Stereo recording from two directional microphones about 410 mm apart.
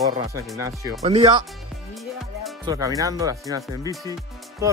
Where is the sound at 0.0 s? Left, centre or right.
Centre.